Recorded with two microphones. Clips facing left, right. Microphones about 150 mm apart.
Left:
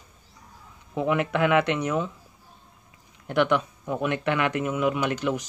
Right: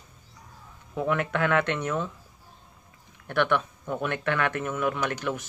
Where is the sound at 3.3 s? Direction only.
15° left (ahead or behind).